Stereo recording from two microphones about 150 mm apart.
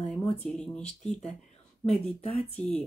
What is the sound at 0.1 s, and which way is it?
Speech, 5° left (ahead or behind).